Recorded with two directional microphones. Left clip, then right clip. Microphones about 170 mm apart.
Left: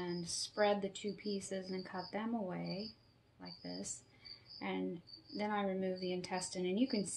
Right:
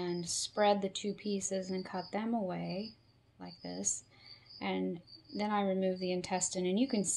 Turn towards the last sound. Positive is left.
turn(degrees=-50)  # may be behind; listen again after turning